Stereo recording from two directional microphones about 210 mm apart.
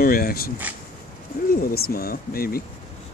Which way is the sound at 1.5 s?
45° left (ahead or behind).